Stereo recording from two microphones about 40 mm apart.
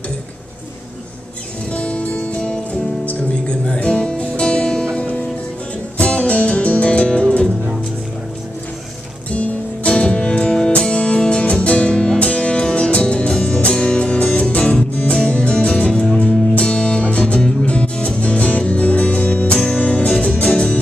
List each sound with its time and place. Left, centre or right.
1.7 s music: left
5.9 s music: left
9.3 s music: left
15.2 s music: left